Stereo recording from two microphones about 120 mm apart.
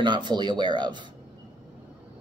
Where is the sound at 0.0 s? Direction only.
40° right (ahead or behind).